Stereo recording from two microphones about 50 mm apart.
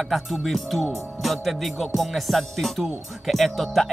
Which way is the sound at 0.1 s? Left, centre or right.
Centre.